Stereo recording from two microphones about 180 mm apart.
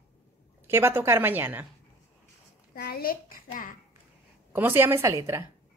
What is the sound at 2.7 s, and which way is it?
A child's voice, 55° left (ahead or behind).